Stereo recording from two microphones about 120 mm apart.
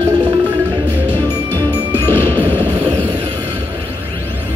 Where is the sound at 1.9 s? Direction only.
20° left (ahead or behind).